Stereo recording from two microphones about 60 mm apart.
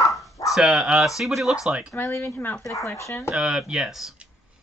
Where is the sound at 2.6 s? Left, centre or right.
Left.